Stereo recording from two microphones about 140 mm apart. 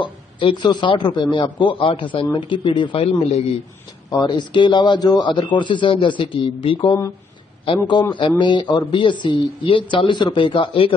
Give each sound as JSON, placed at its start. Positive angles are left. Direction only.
{"t": 0.0, "sound": "a man's voice", "side_deg": 35}
{"t": 4.1, "sound": "a man's voice", "side_deg": 30}